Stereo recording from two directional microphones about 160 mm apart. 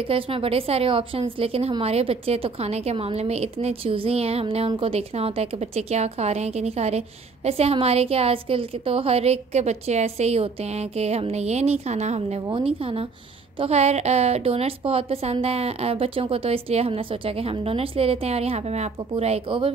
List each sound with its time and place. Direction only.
0.1 s a woman's voice: 35° right (ahead or behind)